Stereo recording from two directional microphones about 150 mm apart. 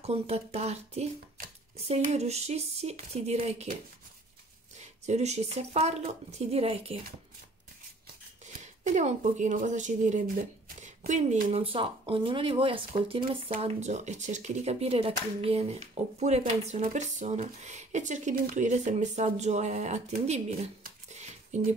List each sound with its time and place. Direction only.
0.0 s speech: 45° right (ahead or behind)
4.7 s speech: 50° right (ahead or behind)
8.8 s speech: 55° right (ahead or behind)
11.5 s speech: 35° right (ahead or behind)
13.6 s speech: 50° right (ahead or behind)
21.1 s a sound: 50° right (ahead or behind)